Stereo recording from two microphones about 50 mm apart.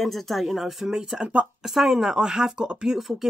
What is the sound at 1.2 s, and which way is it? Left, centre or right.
Speech, right.